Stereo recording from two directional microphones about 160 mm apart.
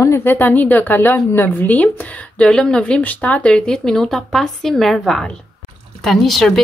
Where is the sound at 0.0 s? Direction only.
15° left (ahead or behind).